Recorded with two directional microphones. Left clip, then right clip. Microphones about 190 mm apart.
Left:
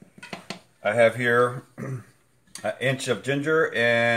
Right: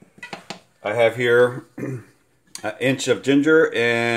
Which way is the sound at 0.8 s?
45° right (ahead or behind).